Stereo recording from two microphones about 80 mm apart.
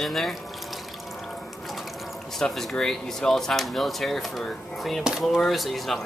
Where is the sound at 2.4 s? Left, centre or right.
Centre.